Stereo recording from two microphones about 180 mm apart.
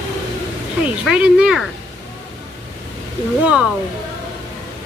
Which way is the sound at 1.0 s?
5° right (ahead or behind).